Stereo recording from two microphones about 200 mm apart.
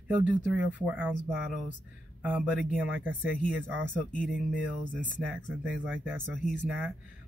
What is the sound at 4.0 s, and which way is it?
Speech, 40° left (ahead or behind).